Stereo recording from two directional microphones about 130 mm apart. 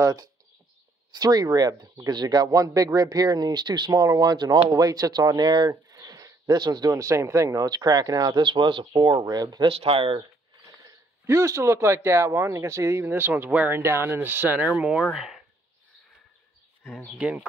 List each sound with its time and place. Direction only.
0.0 s speech: 25° right (ahead or behind)
9.7 s speech: 45° right (ahead or behind)
10.8 s speech: 25° right (ahead or behind); by 15.4 s 5° right (ahead or behind)
16.8 s speech: centre (ahead or behind)
17.2 s speech: 10° right (ahead or behind)